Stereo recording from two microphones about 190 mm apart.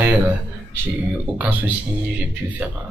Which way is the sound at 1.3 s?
10° right (ahead or behind).